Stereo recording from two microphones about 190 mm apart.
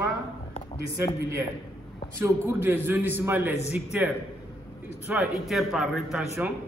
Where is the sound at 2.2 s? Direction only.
15° right (ahead or behind).